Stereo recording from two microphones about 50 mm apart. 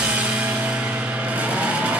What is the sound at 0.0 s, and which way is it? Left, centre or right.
Music, right.